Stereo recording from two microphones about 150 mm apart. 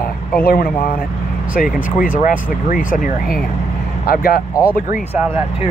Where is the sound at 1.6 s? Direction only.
70° left (ahead or behind).